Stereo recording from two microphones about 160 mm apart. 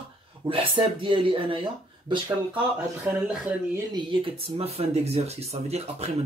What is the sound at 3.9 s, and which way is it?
Speech, 35° right (ahead or behind).